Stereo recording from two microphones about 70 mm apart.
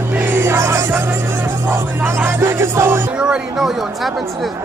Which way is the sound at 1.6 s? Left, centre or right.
Right.